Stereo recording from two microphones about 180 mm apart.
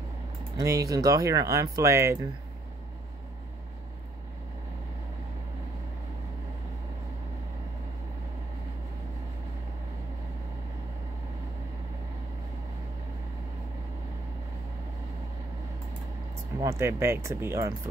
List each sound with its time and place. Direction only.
0.6 s speech: 20° right (ahead or behind)
16.5 s speech: 15° right (ahead or behind)